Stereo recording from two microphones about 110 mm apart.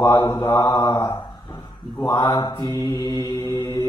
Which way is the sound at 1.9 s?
25° left (ahead or behind).